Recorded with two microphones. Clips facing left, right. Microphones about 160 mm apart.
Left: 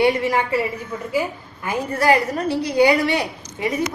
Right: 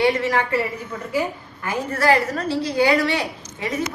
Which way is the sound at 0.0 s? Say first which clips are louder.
Left 1 dB; 15° left (ahead or behind).